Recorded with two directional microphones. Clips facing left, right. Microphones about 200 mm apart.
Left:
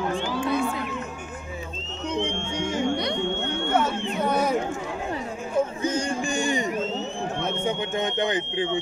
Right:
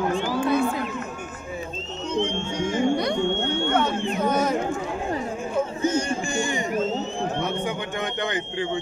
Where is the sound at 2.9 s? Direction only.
50° right (ahead or behind).